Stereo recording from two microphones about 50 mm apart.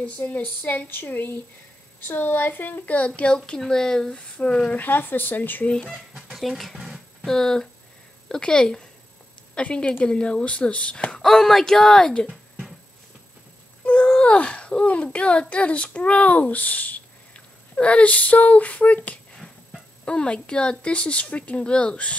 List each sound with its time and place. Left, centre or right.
0.2 s speech: left
3.3 s speech: centre
4.4 s speech: left
6.3 s speech: centre
6.8 s a sound: centre
7.2 s speech: centre
11.1 s speech: centre
13.8 s wail: left
15.1 s speech: left